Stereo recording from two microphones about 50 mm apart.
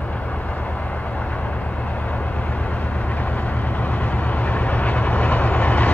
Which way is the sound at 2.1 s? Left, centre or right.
Left.